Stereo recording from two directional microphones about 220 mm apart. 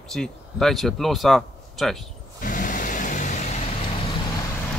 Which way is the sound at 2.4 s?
35° left (ahead or behind).